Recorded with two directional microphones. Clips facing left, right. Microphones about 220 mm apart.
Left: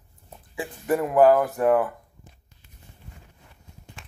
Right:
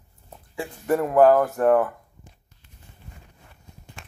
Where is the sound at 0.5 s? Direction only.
15° left (ahead or behind).